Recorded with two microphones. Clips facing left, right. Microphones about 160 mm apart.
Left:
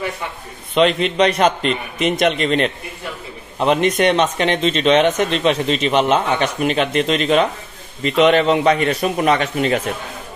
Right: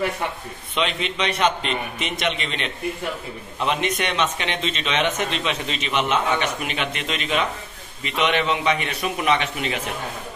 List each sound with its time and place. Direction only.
0.7 s speech: 40° left (ahead or behind)